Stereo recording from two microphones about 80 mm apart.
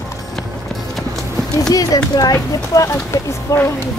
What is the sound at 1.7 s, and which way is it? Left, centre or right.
Speech, left.